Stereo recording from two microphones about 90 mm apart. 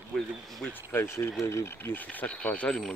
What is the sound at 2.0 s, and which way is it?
Speech, 15° left (ahead or behind).